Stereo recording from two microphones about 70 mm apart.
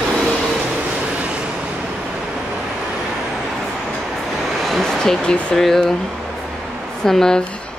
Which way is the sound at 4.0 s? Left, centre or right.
Centre.